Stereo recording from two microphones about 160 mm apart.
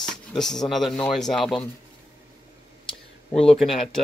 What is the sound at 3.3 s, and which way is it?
Speech, 35° left (ahead or behind).